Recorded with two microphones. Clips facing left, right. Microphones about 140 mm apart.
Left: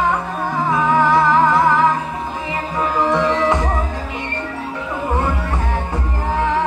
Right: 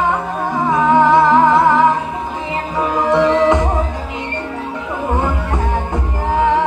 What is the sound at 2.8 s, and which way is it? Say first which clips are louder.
Music: right 3 dB; 15° right (ahead or behind).